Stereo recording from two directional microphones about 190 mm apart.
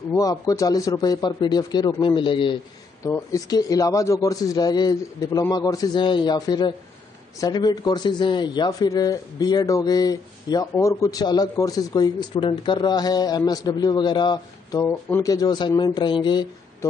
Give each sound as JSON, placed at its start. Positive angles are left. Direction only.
{"t": 0.1, "sound": "speech", "side_deg": 20}